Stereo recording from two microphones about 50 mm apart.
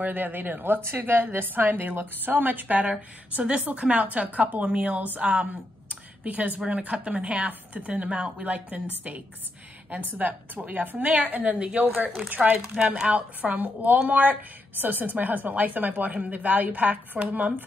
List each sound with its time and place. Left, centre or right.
0.0 s a woman's voice: right
3.3 s a woman's voice: right
10.1 s a woman's voice: right
12.4 s speech: centre
13.1 s a woman's voice: right